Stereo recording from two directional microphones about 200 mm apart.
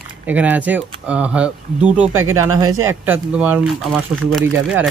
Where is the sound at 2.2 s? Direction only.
90° right.